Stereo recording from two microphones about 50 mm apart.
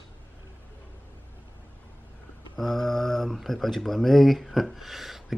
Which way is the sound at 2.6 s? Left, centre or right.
Centre.